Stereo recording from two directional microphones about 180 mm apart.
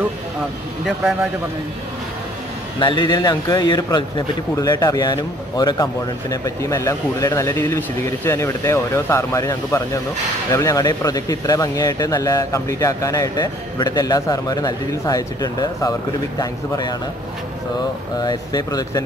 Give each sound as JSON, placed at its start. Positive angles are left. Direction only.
{"t": 2.8, "sound": "speech", "side_deg": 25}
{"t": 18.2, "sound": "speech", "side_deg": 20}